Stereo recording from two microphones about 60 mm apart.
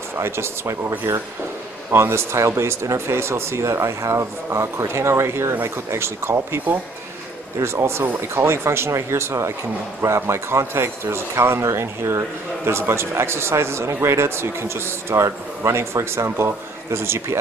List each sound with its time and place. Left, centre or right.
0.2 s speech: right